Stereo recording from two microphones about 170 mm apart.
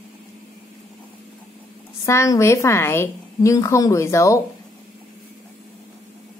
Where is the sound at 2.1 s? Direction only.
15° left (ahead or behind).